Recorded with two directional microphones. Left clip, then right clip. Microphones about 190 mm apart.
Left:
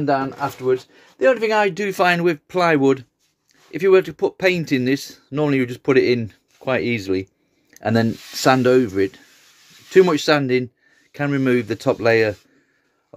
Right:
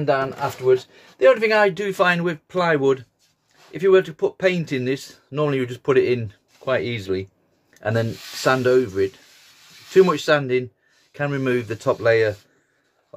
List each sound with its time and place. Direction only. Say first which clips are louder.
0.0 s speech: left 1 dB; 25° left (ahead or behind); by 12.4 s 40° left (ahead or behind)